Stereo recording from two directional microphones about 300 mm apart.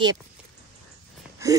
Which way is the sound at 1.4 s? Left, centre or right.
Centre.